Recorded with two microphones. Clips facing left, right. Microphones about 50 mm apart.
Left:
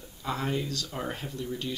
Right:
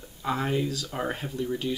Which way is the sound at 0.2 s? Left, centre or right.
Centre.